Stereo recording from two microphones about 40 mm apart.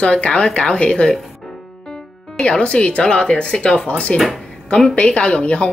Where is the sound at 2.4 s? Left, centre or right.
Left.